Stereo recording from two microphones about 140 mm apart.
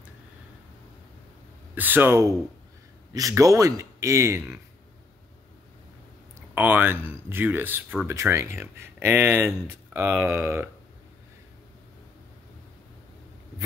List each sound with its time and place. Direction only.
1.8 s speech: 15° right (ahead or behind)
6.5 s speech: 15° right (ahead or behind)